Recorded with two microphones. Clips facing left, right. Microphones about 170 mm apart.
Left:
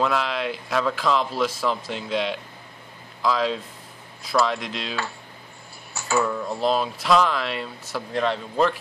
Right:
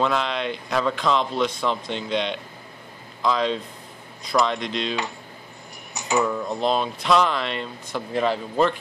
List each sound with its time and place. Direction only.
0.0 s speech: 5° left (ahead or behind)
5.9 s a sound: 20° right (ahead or behind)
6.2 s speech: centre (ahead or behind)